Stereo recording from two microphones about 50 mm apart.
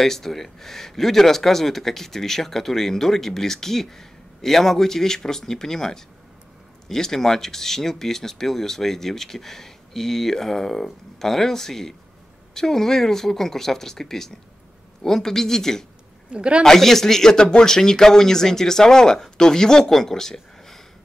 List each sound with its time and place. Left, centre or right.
0.0 s speech: centre
16.3 s speech: centre
16.6 s speech: centre